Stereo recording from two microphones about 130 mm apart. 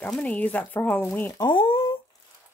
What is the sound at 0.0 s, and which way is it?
Speech, 10° left (ahead or behind).